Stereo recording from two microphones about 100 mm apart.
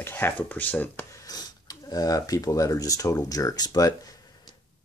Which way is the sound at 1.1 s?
40° left (ahead or behind).